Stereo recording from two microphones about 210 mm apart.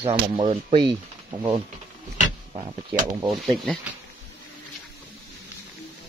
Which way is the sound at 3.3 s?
Centre (ahead or behind).